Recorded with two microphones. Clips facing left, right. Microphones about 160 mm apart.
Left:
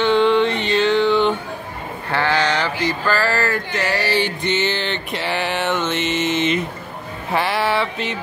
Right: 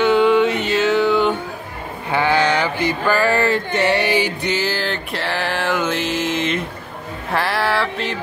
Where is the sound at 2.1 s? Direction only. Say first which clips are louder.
Right 2 dB; 15° right (ahead or behind).